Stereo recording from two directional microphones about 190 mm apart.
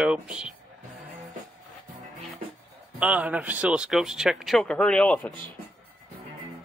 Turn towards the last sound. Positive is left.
turn(degrees=5)  # may be behind; listen again after turning